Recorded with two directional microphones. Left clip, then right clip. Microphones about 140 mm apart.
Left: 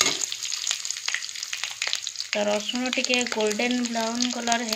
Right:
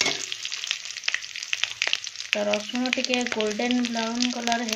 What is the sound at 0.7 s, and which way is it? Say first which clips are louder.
Frying: right 2 dB; 15° right (ahead or behind).